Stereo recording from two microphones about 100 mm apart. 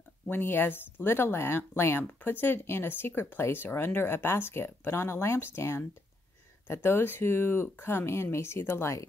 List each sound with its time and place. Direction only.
0.3 s speech: 20° left (ahead or behind)